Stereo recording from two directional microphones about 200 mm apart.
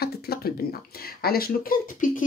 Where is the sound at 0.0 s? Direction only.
50° left (ahead or behind).